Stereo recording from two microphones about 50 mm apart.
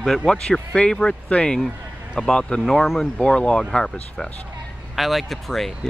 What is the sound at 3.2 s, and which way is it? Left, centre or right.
Speech, centre.